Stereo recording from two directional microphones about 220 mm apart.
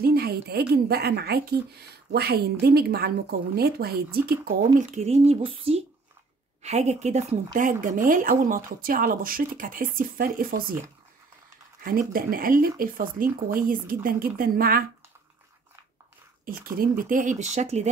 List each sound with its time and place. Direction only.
0.0 s speech: 45° right (ahead or behind)
4.7 s a woman's voice: 30° right (ahead or behind)
11.8 s speech: 40° right (ahead or behind)
16.6 s speech: 40° right (ahead or behind)